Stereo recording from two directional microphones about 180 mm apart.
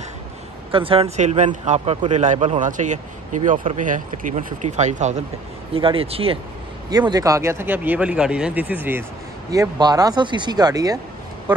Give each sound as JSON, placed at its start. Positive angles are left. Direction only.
{"t": 0.7, "sound": "a man's voice", "side_deg": -30}
{"t": 5.7, "sound": "a man's voice", "side_deg": -30}
{"t": 6.9, "sound": "speech", "side_deg": -20}
{"t": 9.5, "sound": "speech", "side_deg": -20}